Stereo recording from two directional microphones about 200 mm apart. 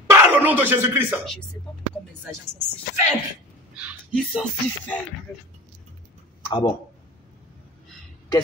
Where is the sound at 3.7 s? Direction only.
5° right (ahead or behind).